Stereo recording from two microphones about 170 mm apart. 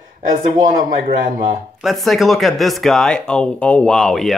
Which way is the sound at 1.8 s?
Centre (ahead or behind).